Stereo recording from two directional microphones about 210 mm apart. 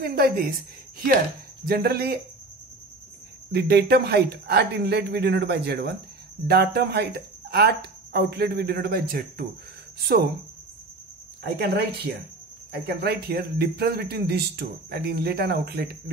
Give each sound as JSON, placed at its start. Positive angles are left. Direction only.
{"t": 0.0, "sound": "speech", "side_deg": -45}
{"t": 3.5, "sound": "speech", "side_deg": -50}
{"t": 11.4, "sound": "speech", "side_deg": -50}